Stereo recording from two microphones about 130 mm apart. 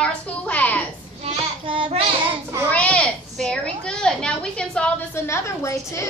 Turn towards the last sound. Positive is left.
turn(degrees=20)  # may be behind; listen again after turning